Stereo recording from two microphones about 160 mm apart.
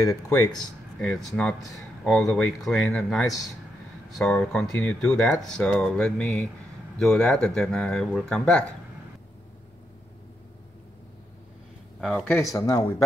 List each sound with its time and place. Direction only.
0.0 s speech: 20° left (ahead or behind)
0.9 s speech: centre (ahead or behind)
12.0 s speech: centre (ahead or behind)
12.3 s speech: 20° left (ahead or behind)